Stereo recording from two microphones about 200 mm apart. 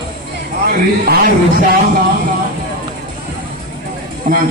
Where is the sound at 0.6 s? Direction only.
50° right (ahead or behind).